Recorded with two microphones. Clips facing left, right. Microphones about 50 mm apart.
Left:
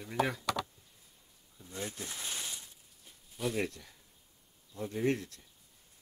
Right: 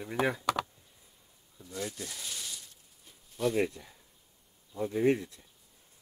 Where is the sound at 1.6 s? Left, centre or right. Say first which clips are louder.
Right 3 dB; left.